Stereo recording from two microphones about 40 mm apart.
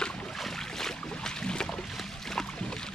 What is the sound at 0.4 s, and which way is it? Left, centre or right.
Boat, centre.